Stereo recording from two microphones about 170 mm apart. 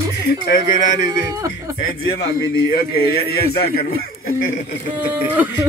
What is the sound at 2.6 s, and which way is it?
A man's voice, 60° left (ahead or behind).